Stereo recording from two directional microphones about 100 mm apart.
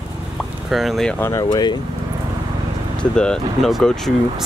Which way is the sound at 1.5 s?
45° left (ahead or behind).